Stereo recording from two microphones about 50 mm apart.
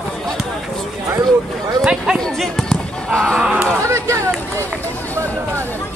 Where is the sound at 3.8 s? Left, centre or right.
Right.